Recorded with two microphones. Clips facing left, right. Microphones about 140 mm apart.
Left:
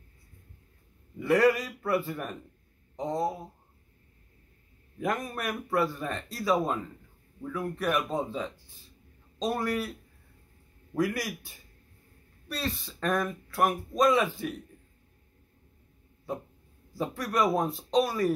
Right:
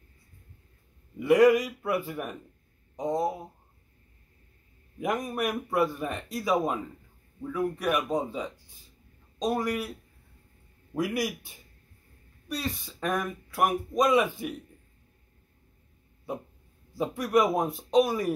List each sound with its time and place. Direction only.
1.2 s speech: 15° right (ahead or behind)
5.0 s speech: 15° right (ahead or behind)
7.5 s speech: 10° right (ahead or behind)
11.0 s speech: 20° right (ahead or behind)
16.9 s speech: 20° right (ahead or behind)